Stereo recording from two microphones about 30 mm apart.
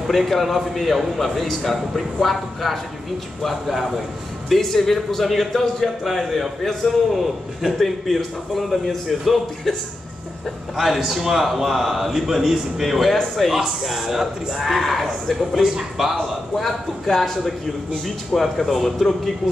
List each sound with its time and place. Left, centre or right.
0.0 s speech: centre
4.6 s speech: centre
9.7 s speech: centre
10.8 s a man's voice: centre
16.6 s speech: centre
18.0 s speech: centre